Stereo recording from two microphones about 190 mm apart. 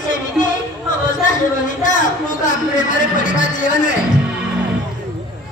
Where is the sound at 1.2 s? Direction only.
40° left (ahead or behind).